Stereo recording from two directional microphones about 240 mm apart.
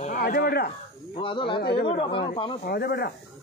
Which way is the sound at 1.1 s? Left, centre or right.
Left.